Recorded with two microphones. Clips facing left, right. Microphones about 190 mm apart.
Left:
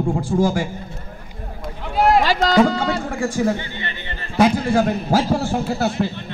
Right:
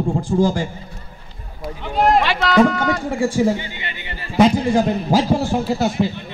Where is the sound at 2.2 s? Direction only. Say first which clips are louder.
Even; 35° left (ahead or behind).